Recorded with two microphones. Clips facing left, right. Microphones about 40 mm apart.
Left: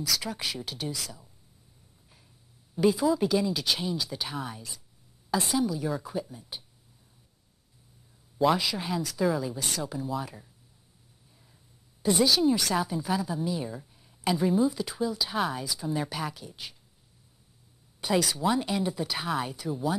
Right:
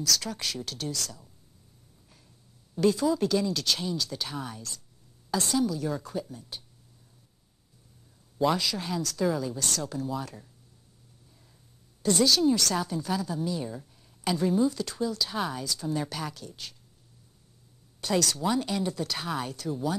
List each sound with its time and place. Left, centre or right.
0.0 s a woman's voice: centre
2.7 s a woman's voice: centre
8.4 s a woman's voice: centre
12.0 s a woman's voice: centre
18.0 s a woman's voice: centre